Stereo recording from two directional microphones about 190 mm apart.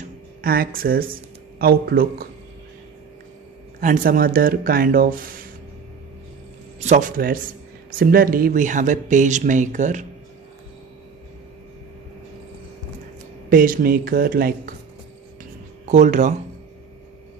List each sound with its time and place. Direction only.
0.4 s speech: 50° right (ahead or behind)
3.8 s speech: 45° right (ahead or behind)
6.8 s speech: 40° right (ahead or behind)
13.5 s speech: 50° right (ahead or behind)
15.8 s speech: 40° right (ahead or behind)